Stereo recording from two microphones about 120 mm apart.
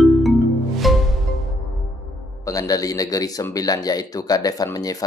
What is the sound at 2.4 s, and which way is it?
A man's voice, 30° left (ahead or behind).